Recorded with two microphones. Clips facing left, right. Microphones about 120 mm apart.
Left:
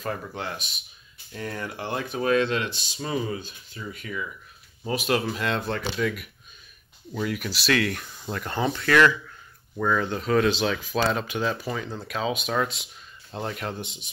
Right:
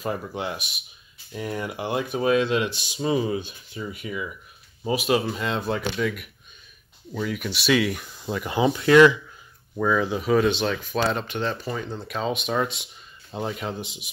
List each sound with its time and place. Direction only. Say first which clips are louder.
0.0 s speech: right 3 dB; 15° right (ahead or behind)
9.8 s speech: right 2 dB; 5° right (ahead or behind)